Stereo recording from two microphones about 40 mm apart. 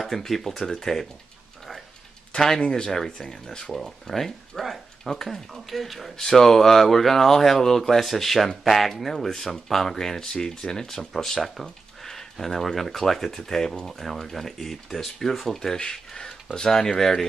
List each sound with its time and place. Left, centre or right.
0.0 s speech: centre
2.3 s speech: centre
3.7 s speech: centre
11.0 s speech: centre